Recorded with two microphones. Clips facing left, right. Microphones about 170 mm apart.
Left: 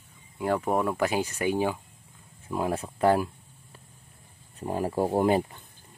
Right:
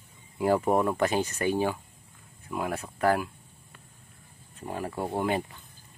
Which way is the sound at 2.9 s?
30° left (ahead or behind).